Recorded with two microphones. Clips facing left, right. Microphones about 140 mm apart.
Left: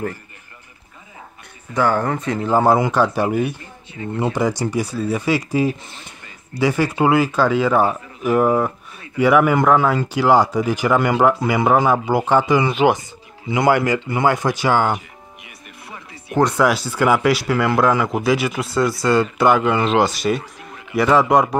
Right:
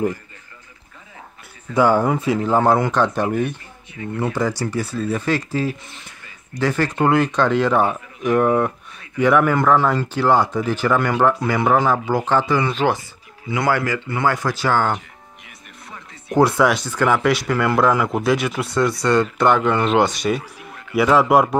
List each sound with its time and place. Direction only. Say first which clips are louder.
1.7 s speech: right 3 dB; 10° right (ahead or behind)
2.4 s speech: left 2 dB; 5° left (ahead or behind)
3.9 s speech: left 2 dB; 30° left (ahead or behind)
4.3 s speech: left 3 dB; 15° left (ahead or behind)
5.9 s a sound: left 2 dB; 30° left (ahead or behind)
6.6 s speech: left 2 dB; 10° left (ahead or behind)